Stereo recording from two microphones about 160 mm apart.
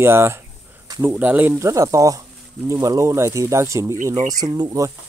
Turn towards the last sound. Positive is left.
turn(degrees=-20)  # may be behind; listen again after turning